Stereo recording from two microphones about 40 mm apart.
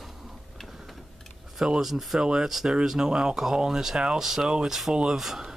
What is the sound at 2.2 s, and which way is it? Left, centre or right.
Speech, centre.